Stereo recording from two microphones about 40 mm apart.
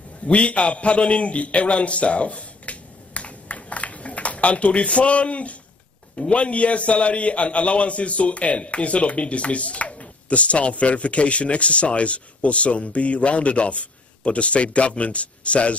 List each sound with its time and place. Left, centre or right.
0.4 s a man's voice: left